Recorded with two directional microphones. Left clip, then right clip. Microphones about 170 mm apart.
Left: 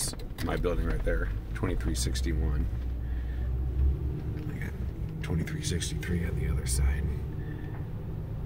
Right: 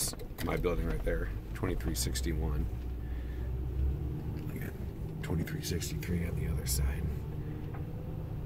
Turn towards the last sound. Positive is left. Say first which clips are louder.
# left 2 dB
turn(degrees=0)  # may be behind; listen again after turning